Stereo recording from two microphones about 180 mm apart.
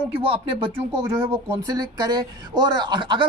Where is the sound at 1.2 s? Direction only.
15° right (ahead or behind).